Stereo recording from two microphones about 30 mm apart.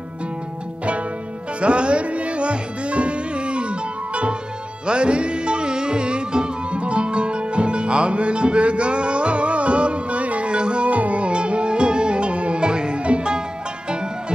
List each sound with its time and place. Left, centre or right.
1.6 s music: right
10.5 s music: right
10.9 s music: right